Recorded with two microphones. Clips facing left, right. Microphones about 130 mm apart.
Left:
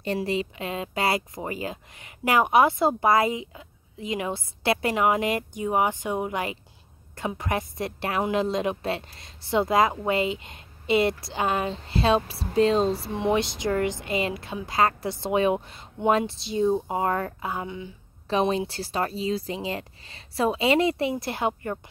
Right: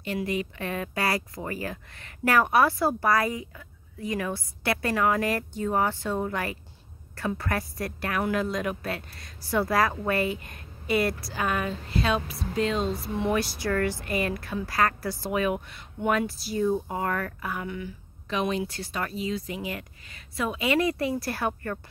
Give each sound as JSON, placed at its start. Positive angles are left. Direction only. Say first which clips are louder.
{"t": 0.0, "sound": "speech", "louder": "left 3 dB", "side_deg": 30}
{"t": 13.1, "sound": "speech", "louder": "left 2 dB", "side_deg": 20}